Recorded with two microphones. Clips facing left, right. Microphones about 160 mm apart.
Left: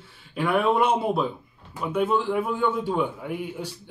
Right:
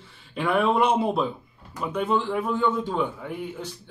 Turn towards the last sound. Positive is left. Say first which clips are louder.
# left 2 dB
turn(degrees=10)  # may be behind; listen again after turning